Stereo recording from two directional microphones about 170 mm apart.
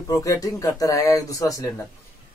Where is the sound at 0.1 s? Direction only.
20° left (ahead or behind).